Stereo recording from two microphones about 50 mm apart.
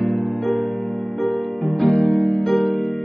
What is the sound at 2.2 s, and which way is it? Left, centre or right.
Music, centre.